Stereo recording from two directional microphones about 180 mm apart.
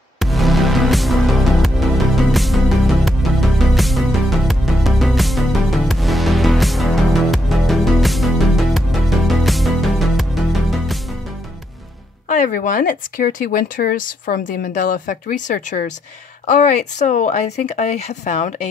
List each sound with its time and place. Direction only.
0.2 s music: centre (ahead or behind)
12.3 s speech: 50° left (ahead or behind)